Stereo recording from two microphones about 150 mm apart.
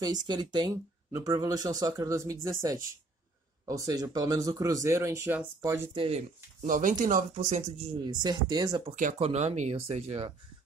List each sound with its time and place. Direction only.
0.0 s speech: 25° right (ahead or behind)
5.9 s speech: 40° right (ahead or behind)
6.6 s speech: 60° right (ahead or behind)
8.0 s speech: 30° right (ahead or behind)
9.2 s speech: 45° right (ahead or behind)